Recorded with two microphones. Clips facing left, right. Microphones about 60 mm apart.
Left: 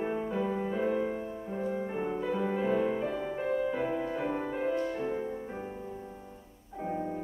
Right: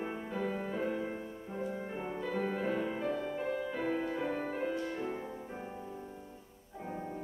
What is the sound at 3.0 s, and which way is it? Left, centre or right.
Music, centre.